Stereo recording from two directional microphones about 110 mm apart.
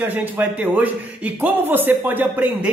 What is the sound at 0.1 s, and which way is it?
A man's voice, 15° right (ahead or behind).